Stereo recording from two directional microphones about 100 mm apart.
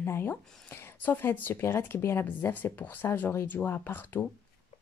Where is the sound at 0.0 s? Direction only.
25° left (ahead or behind).